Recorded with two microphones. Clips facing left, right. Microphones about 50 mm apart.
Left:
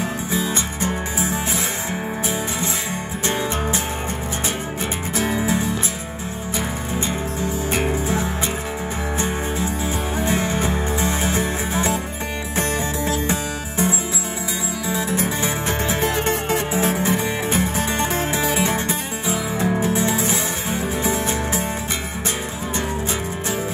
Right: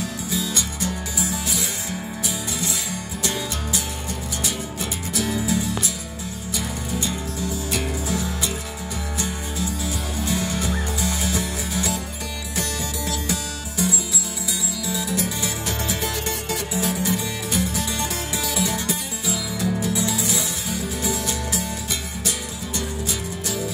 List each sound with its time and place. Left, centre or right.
0.3 s music: left
3.3 s music: left
5.1 s music: left
7.1 s music: left
10.2 s music: left